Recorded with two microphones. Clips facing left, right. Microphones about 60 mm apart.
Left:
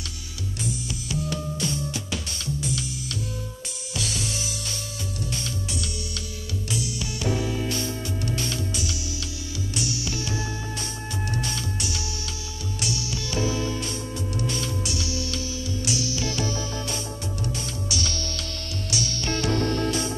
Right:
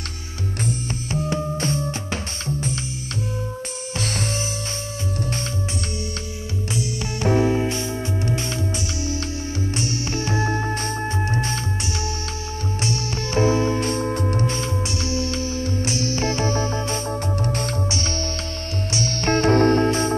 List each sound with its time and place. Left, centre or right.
0.7 s music: right
6.7 s music: right
11.2 s music: right
12.8 s music: right
17.8 s music: right